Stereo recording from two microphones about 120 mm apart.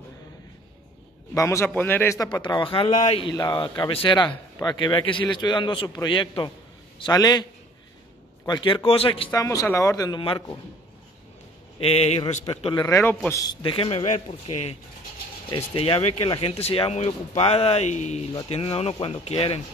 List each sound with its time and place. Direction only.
1.3 s a man's voice: 25° left (ahead or behind)
2.4 s speech: 45° left (ahead or behind)
2.9 s speech: 80° left
3.5 s a man's voice: 40° left (ahead or behind)
8.5 s speech: 40° left (ahead or behind)
9.3 s speech: 30° left (ahead or behind)
11.8 s speech: 60° left (ahead or behind)
12.5 s speech: 45° left (ahead or behind)
12.8 s a man's voice: 20° left (ahead or behind)
13.6 s speech: 50° left (ahead or behind)
14.0 s a man's voice: 70° left (ahead or behind)
15.5 s speech: 45° left (ahead or behind); by 18.2 s 75° left (ahead or behind)
18.5 s speech: 60° left (ahead or behind)